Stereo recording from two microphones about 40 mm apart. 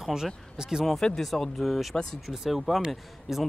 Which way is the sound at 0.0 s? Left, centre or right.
Centre.